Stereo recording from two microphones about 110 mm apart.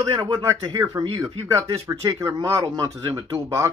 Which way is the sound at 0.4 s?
30° right (ahead or behind).